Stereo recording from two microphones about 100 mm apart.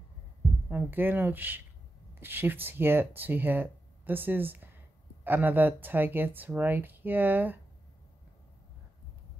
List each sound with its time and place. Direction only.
0.7 s speech: 20° right (ahead or behind)